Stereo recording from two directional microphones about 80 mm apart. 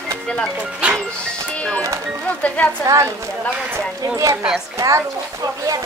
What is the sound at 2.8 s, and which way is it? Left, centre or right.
Speech, right.